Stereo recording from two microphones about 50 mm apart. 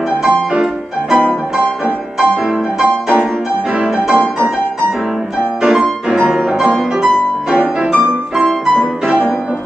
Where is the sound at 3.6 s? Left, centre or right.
Centre.